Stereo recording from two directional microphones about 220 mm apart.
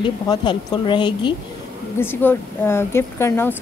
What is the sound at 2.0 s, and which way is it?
Speech, 10° left (ahead or behind).